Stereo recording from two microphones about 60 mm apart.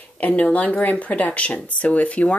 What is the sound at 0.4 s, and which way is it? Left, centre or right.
Speech, left.